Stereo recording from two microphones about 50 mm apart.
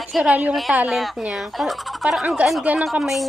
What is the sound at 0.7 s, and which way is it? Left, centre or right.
Speech, right.